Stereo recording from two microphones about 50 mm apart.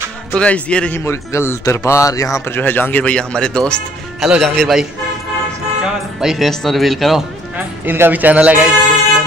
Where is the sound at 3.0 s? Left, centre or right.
Left.